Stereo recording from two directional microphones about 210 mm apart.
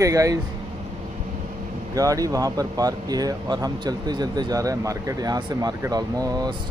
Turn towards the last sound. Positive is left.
turn(degrees=-20)  # may be behind; listen again after turning